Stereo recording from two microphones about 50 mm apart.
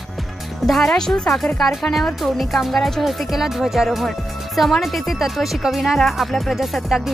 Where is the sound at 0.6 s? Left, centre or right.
Centre.